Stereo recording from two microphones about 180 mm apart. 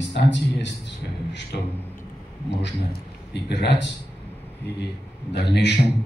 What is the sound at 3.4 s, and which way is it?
Speech, 70° left (ahead or behind).